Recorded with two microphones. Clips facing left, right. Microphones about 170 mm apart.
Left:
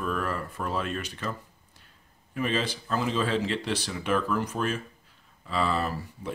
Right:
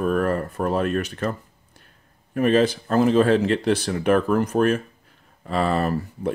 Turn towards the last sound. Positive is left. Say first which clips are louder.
# right 9 dB
turn(degrees=-55)  # may be behind; listen again after turning